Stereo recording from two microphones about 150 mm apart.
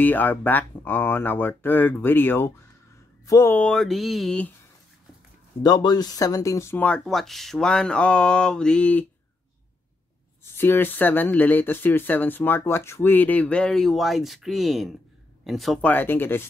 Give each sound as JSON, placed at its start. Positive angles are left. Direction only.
{"t": 0.0, "sound": "speech", "side_deg": 10}
{"t": 3.5, "sound": "speech", "side_deg": 5}
{"t": 5.6, "sound": "speech", "side_deg": 25}
{"t": 10.4, "sound": "speech", "side_deg": 15}